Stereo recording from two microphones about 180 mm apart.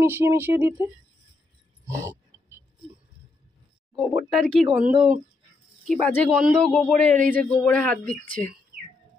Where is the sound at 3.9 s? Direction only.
Centre (ahead or behind).